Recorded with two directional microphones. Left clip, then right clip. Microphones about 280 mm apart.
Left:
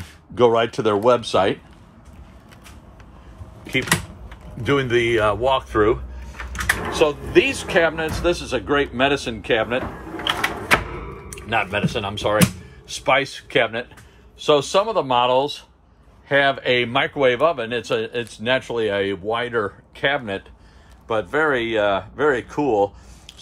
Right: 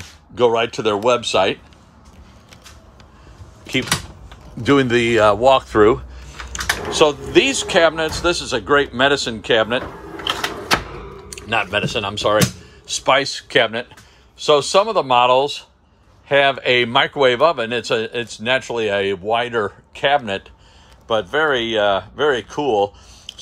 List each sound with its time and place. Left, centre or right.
0.3 s speech: centre
4.6 s speech: centre